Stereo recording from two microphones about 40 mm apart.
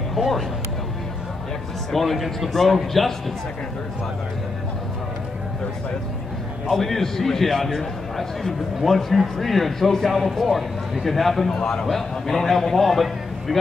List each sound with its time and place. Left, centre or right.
0.1 s a sound: centre
1.9 s a man's voice: centre
6.7 s a man's voice: centre